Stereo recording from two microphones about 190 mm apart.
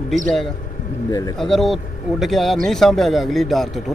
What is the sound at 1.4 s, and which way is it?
Speech, centre (ahead or behind).